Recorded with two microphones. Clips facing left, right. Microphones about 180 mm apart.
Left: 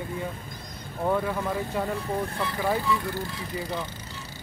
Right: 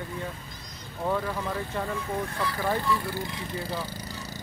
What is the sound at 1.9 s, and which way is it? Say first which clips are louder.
Speech: left 2 dB; 25° left (ahead or behind).